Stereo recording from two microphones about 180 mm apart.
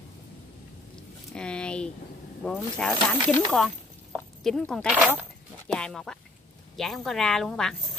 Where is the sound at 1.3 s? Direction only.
5° left (ahead or behind).